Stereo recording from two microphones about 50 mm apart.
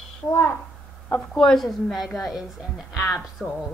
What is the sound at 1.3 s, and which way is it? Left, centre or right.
A woman's voice, centre.